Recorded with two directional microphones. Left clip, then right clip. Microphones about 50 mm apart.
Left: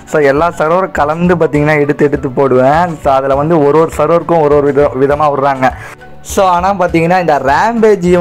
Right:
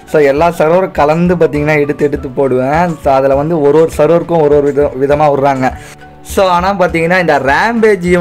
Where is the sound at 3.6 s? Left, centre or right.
Left.